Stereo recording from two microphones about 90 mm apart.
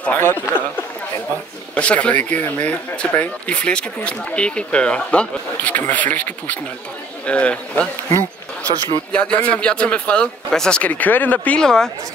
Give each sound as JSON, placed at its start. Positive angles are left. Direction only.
{"t": 0.0, "sound": "speech", "side_deg": 20}
{"t": 1.8, "sound": "speech", "side_deg": 15}
{"t": 8.1, "sound": "bee", "side_deg": -35}
{"t": 9.1, "sound": "speech", "side_deg": 15}
{"t": 10.9, "sound": "speech", "side_deg": 20}